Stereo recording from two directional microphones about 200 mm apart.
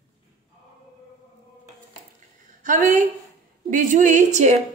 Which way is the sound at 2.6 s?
40° right (ahead or behind).